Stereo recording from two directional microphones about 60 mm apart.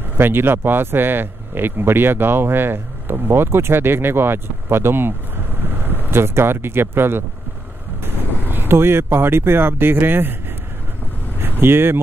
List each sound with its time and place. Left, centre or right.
0.2 s speech: right
11.6 s speech: right